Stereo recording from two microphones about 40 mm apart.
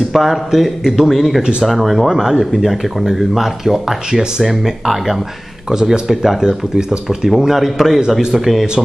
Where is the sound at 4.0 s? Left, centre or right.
Centre.